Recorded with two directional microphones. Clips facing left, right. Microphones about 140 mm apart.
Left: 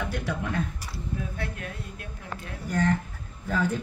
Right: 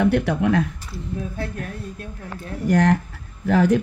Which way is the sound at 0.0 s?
70° right (ahead or behind).